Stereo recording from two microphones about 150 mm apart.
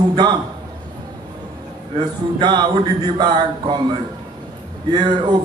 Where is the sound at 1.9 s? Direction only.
30° right (ahead or behind).